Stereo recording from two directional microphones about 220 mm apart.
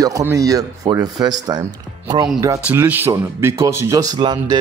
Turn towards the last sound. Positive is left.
turn(degrees=-20)  # may be behind; listen again after turning